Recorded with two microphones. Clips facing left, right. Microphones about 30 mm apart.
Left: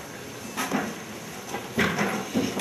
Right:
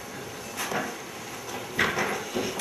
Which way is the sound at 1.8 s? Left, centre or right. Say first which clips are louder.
Left 1 dB; centre.